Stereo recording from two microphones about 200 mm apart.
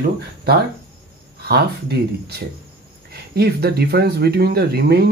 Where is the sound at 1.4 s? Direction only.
55° right (ahead or behind).